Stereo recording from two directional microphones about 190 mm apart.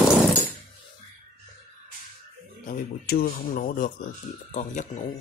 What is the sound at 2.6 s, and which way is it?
Speech, 50° left (ahead or behind).